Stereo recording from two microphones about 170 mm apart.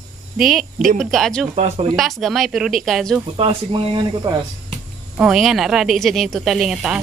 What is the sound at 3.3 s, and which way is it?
Speech, 30° right (ahead or behind).